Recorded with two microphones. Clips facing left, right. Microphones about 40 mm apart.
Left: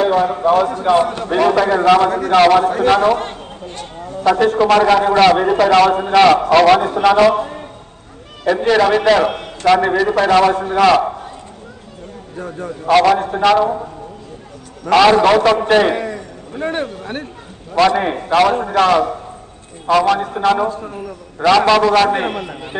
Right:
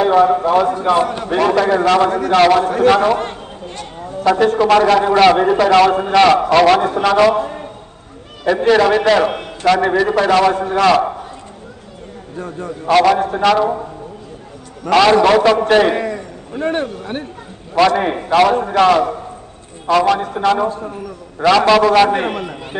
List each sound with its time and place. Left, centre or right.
0.0 s a man's voice: centre
4.2 s a man's voice: centre
8.5 s a man's voice: centre
12.4 s a man's voice: centre
12.8 s a man's voice: centre
14.9 s a man's voice: centre
17.7 s a man's voice: centre